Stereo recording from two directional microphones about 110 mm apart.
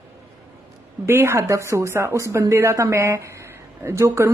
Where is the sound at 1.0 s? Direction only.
20° right (ahead or behind).